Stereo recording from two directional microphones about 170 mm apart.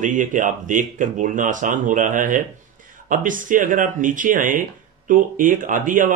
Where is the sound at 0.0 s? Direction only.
50° right (ahead or behind).